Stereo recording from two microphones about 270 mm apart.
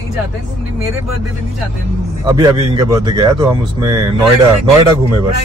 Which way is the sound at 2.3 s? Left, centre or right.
Centre.